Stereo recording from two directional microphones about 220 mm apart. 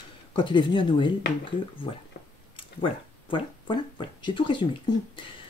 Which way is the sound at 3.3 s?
20° left (ahead or behind).